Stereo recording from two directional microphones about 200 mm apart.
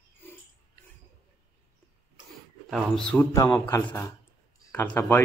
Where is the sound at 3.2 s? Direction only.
15° left (ahead or behind).